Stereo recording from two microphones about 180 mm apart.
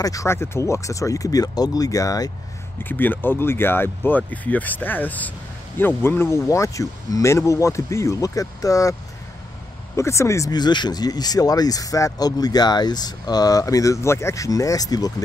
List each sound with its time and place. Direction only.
0.0 s speech: 20° left (ahead or behind)
9.9 s speech: 15° left (ahead or behind)